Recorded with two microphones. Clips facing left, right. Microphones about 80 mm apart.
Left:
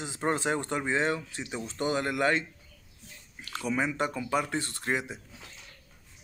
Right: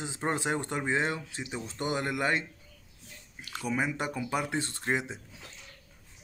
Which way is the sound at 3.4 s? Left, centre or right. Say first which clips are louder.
Left 1 dB; centre.